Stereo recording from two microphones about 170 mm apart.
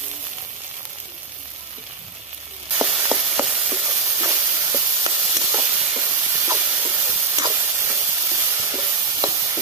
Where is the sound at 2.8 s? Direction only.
10° right (ahead or behind).